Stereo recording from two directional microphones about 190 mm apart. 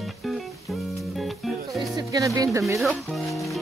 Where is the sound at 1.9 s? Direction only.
20° right (ahead or behind).